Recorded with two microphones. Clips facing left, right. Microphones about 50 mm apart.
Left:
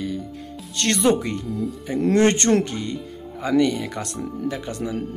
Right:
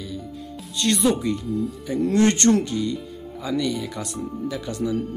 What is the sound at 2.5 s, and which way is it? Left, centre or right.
Speech, left.